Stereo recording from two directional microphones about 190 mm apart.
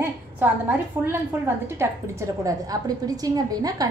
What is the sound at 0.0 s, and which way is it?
A woman's voice, 10° right (ahead or behind).